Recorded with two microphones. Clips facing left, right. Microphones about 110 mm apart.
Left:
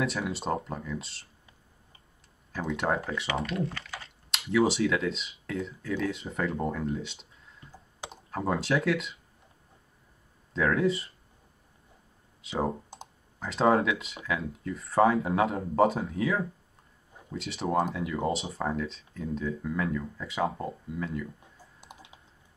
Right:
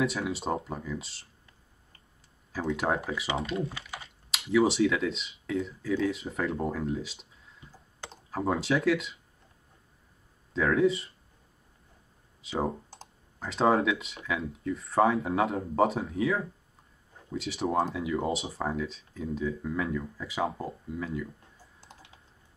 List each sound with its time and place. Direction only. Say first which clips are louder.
0.0 s speech: right 1 dB; centre (ahead or behind)
2.5 s speech: even; centre (ahead or behind)
3.3 s speech: even; 25° right (ahead or behind)
3.6 s speech: left 2 dB; 10° right (ahead or behind)
8.3 s speech: even; centre (ahead or behind)
10.5 s speech: right 1 dB; centre (ahead or behind)
12.4 s speech: left 1 dB; centre (ahead or behind)
21.8 s typing: left 3 dB; 15° left (ahead or behind)